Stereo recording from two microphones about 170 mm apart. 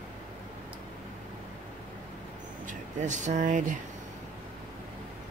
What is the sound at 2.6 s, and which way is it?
Speech, 45° right (ahead or behind).